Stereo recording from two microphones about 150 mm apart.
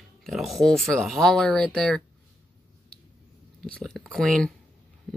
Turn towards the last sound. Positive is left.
turn(degrees=5)  # may be behind; listen again after turning